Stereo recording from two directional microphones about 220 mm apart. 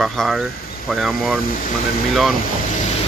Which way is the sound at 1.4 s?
40° left (ahead or behind).